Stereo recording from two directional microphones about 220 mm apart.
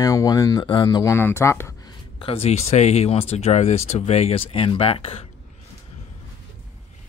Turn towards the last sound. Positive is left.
turn(degrees=25)  # may be behind; listen again after turning